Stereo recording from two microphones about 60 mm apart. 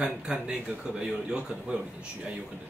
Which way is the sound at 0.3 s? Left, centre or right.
Centre.